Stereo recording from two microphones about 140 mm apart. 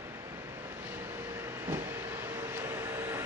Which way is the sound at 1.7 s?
15° right (ahead or behind).